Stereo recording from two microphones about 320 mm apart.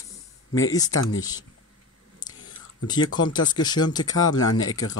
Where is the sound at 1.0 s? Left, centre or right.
Left.